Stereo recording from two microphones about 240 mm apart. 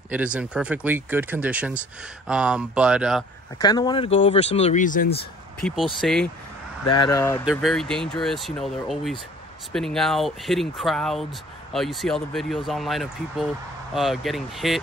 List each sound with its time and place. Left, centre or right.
0.1 s speech: centre
3.6 s speech: centre; by 5.2 s left
5.6 s speech: centre
6.9 s speech: centre
7.4 s speech: centre